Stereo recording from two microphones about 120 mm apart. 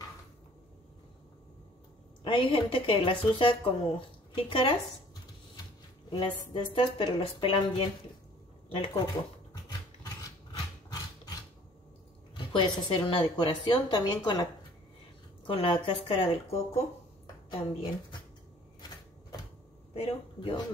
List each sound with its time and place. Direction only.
2.2 s a woman's voice: 45° left (ahead or behind)
6.0 s a woman's voice: 45° left (ahead or behind)
8.9 s a sound: 35° left (ahead or behind)
12.4 s a woman's voice: 40° left (ahead or behind)
15.4 s a woman's voice: 45° left (ahead or behind)
19.9 s a man's voice: 55° left (ahead or behind)